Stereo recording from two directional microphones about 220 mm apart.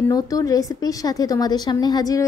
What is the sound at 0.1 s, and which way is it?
A woman's voice, 15° left (ahead or behind).